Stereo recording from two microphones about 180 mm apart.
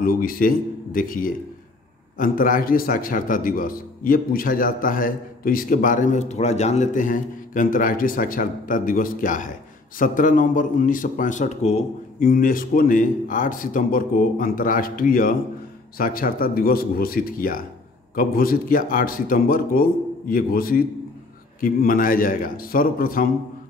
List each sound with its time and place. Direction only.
0.0 s a man's voice: 55° left (ahead or behind)
12.2 s a man's voice: 50° left (ahead or behind)